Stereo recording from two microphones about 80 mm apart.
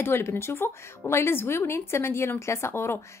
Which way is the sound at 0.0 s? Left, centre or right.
Left.